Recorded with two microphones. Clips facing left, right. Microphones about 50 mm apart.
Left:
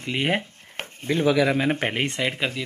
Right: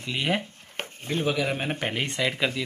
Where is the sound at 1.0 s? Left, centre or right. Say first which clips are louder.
Left 6 dB; left.